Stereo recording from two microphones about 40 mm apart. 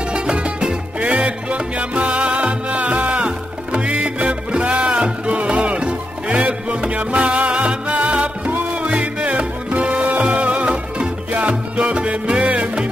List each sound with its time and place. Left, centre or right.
0.1 s music: right
1.0 s salsa music: right
10.3 s music: right